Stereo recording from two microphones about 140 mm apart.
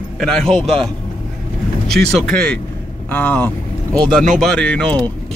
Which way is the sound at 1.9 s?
5° left (ahead or behind).